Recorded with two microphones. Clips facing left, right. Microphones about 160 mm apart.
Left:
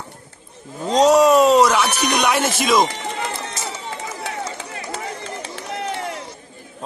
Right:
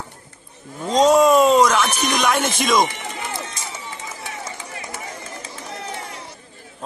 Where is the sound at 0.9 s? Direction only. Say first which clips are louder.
Left 1 dB; centre (ahead or behind).